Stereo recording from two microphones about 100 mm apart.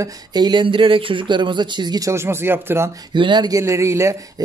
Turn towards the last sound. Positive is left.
turn(degrees=-30)  # may be behind; listen again after turning